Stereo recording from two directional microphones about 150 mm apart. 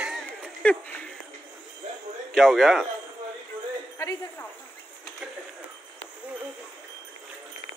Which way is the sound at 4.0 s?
20° left (ahead or behind).